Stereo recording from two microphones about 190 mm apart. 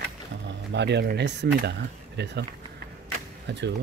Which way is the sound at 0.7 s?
65° right (ahead or behind).